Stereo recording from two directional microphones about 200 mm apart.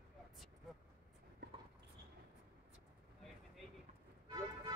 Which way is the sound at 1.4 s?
60° right (ahead or behind).